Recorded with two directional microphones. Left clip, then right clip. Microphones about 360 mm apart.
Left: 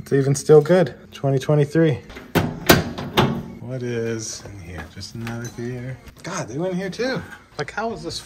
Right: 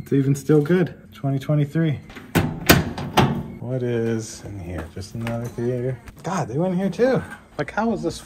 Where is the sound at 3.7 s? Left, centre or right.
Centre.